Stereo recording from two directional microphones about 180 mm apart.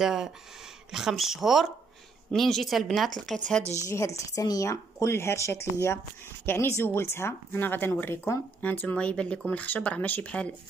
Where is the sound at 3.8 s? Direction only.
15° left (ahead or behind).